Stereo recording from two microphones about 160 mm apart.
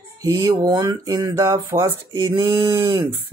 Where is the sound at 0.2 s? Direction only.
20° right (ahead or behind).